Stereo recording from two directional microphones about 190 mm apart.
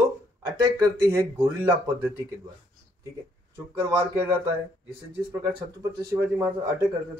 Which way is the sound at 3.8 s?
15° right (ahead or behind).